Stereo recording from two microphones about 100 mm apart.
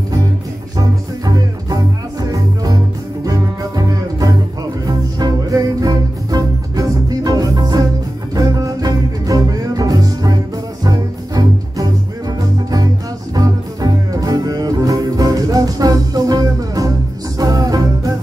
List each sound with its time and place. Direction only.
0.7 s music: 40° right (ahead or behind)
13.3 s music: 40° right (ahead or behind)